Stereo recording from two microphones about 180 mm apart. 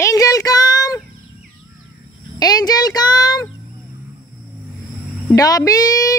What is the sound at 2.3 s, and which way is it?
Speech, 20° left (ahead or behind).